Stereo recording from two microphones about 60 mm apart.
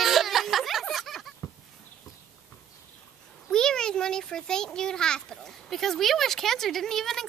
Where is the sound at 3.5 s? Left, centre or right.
Centre.